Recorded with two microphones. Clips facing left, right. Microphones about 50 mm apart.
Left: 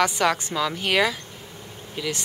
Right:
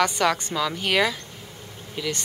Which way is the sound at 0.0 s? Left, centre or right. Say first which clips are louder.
Even; centre.